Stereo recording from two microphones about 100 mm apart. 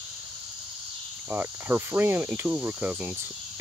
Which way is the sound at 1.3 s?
20° right (ahead or behind).